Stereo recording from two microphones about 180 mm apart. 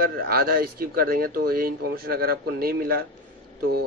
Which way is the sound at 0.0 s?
55° right (ahead or behind).